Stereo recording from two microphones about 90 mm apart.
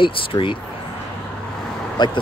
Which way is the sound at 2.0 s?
55° left (ahead or behind).